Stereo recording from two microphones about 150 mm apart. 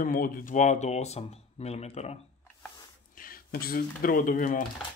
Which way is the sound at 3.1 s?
70° left (ahead or behind).